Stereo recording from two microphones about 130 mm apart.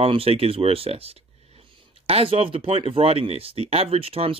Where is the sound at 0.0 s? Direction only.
50° right (ahead or behind).